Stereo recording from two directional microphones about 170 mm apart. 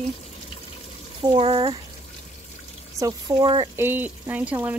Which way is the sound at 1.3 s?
35° right (ahead or behind).